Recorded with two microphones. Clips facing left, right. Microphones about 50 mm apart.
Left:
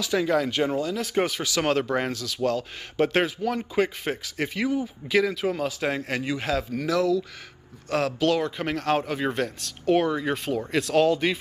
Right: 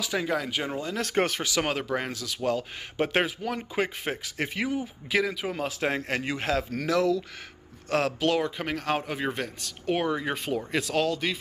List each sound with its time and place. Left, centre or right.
0.0 s speech: centre
0.3 s speech: centre
0.9 s speech: right
1.6 s speech: centre
1.9 s speech: centre
2.1 s speech: right
5.2 s speech: centre
5.6 s a man's voice: right
8.4 s speech: centre
11.0 s speech: centre